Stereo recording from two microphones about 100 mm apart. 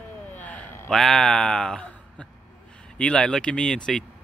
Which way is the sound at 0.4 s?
15° left (ahead or behind).